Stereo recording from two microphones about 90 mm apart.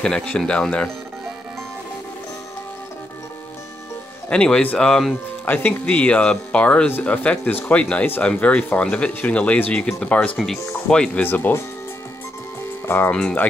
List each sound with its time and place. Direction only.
0.0 s speech: 10° left (ahead or behind)
4.3 s speech: 15° left (ahead or behind)
10.3 s speech: 5° left (ahead or behind)
11.2 s speech: 20° left (ahead or behind)
12.8 s speech: 25° left (ahead or behind)
13.1 s speech: 10° left (ahead or behind)